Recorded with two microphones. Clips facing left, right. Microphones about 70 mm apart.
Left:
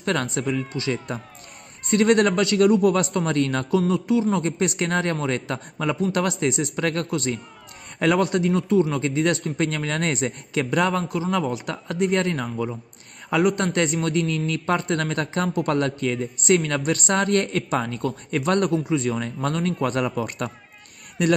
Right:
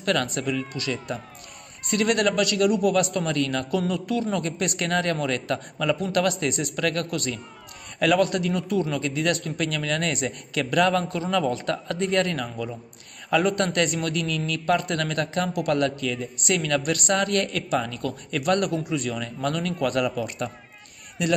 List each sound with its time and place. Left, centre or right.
0.0 s a man's voice: left
3.7 s a man's voice: left